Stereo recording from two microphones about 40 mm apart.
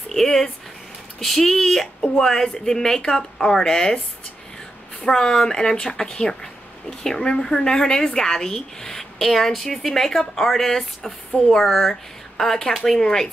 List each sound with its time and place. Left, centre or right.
0.1 s a woman's voice: centre
5.0 s a woman's voice: centre